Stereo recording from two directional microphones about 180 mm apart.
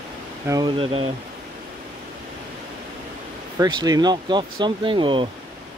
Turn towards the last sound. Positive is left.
turn(degrees=-25)  # may be behind; listen again after turning